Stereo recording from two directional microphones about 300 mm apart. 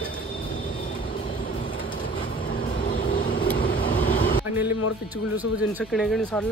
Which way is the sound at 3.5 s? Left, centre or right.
Left.